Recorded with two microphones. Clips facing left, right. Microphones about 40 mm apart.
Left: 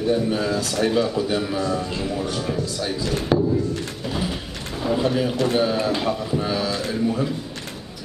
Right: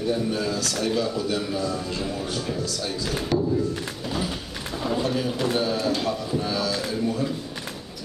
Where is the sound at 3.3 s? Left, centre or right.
Left.